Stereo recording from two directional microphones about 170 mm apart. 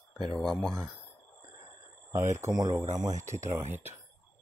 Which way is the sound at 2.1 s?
15° right (ahead or behind).